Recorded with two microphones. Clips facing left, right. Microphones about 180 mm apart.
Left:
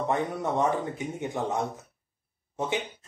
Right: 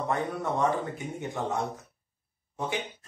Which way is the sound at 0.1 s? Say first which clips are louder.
Left 1 dB; 20° left (ahead or behind).